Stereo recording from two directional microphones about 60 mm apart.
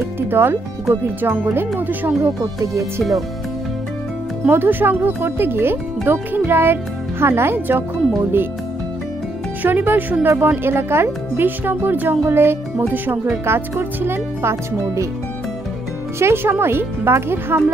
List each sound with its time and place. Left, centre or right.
0.3 s speech: right
2.2 s speech: right
2.8 s speech: centre
4.5 s speech: right
9.6 s speech: right
16.2 s speech: right